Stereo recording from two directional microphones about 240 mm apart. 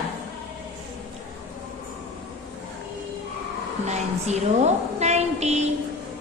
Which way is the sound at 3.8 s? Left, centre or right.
Right.